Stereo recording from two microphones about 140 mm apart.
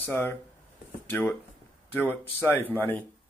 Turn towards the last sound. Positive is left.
turn(degrees=10)  # may be behind; listen again after turning